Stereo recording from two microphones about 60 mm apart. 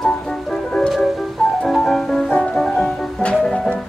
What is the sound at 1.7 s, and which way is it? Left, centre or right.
Music, centre.